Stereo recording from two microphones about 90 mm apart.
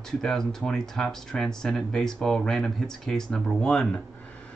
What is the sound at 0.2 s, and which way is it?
Speech, 5° left (ahead or behind).